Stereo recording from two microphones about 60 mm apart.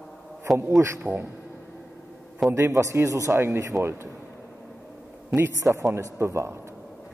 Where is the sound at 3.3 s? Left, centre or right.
Right.